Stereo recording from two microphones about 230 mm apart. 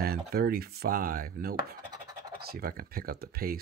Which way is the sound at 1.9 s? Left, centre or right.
Centre.